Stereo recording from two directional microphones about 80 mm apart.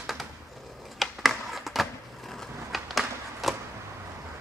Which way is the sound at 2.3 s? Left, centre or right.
Centre.